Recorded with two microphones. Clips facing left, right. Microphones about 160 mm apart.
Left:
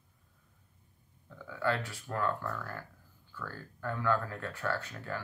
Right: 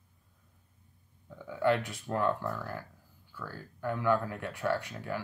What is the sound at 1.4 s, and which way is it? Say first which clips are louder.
Speech: right 5 dB; 20° right (ahead or behind).